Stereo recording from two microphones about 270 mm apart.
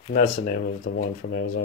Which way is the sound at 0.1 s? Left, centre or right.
Left.